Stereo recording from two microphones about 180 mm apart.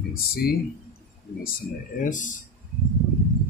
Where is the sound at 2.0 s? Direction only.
45° left (ahead or behind).